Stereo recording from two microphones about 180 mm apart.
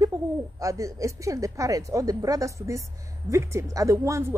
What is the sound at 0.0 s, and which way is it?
Speech, 15° right (ahead or behind).